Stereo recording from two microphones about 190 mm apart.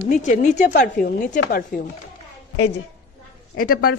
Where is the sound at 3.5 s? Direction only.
50° left (ahead or behind).